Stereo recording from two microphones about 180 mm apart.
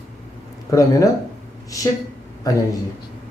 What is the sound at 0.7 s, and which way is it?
Speech, 20° left (ahead or behind).